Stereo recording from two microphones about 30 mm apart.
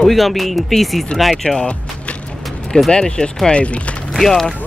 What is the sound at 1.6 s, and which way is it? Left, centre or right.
Music, left.